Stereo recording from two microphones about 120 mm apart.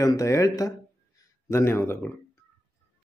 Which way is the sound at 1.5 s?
20° left (ahead or behind).